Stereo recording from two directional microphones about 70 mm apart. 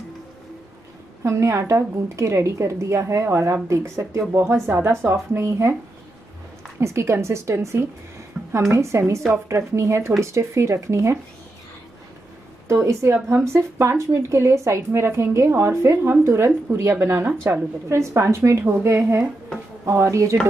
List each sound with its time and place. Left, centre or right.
1.2 s a woman's voice: right
6.8 s a woman's voice: right
8.3 s a sound: centre
8.7 s a woman's voice: right
12.6 s a woman's voice: right
17.8 s a woman's voice: right